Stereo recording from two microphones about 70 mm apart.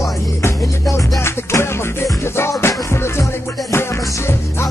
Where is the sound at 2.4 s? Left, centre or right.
Left.